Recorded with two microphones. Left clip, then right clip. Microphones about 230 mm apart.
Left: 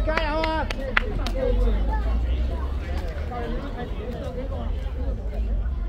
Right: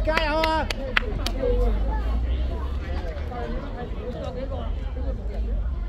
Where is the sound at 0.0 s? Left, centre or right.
Right.